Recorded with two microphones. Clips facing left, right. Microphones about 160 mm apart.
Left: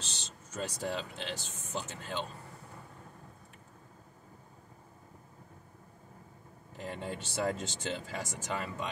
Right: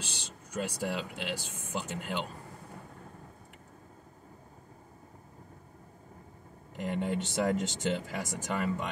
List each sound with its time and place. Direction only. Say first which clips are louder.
0.0 s speech: right 3 dB; 10° right (ahead or behind)
6.8 s speech: right 7 dB; 15° right (ahead or behind)